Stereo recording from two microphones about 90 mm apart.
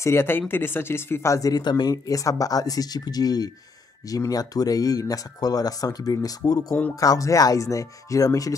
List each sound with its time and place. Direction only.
0.0 s speech: 30° left (ahead or behind)